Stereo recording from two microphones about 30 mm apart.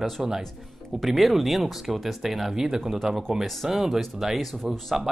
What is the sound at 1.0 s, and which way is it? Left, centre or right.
A man's voice, centre.